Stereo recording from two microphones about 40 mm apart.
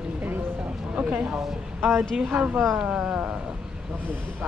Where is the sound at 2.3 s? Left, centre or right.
Right.